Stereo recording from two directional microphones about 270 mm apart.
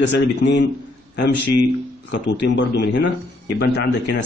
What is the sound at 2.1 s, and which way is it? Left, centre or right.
A man's voice, left.